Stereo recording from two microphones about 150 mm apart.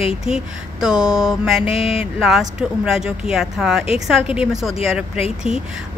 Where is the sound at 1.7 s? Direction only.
40° left (ahead or behind).